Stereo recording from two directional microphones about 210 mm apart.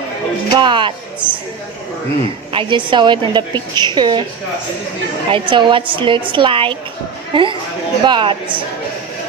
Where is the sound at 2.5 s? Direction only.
20° right (ahead or behind).